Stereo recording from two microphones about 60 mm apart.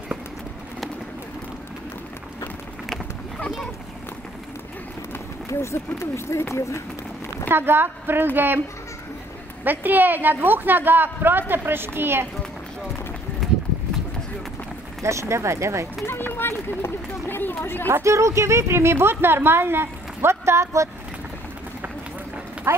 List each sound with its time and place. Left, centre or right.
5.5 s speech: left
7.4 s a woman's voice: right
9.7 s a woman's voice: right
15.0 s a woman's voice: right
16.1 s speech: left
17.8 s a woman's voice: right
22.7 s clip-clop: right